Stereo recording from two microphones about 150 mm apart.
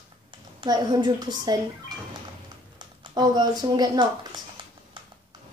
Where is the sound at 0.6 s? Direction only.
30° right (ahead or behind).